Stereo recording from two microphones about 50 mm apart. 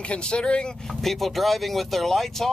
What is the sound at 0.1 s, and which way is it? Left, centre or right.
Speech, centre.